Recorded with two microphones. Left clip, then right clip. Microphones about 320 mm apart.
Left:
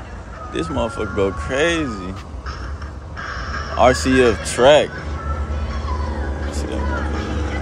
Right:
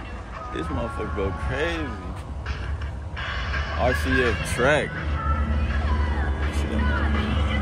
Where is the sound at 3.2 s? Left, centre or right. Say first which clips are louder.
Left 2 dB; right.